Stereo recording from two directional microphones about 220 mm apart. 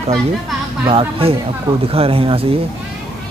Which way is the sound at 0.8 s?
25° right (ahead or behind).